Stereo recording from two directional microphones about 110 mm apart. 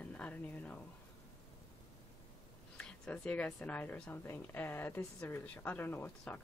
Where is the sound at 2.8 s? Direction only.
10° left (ahead or behind).